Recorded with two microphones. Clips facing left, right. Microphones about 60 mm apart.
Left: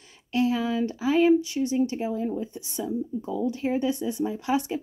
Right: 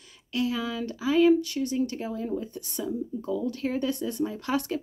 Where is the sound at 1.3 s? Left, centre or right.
Centre.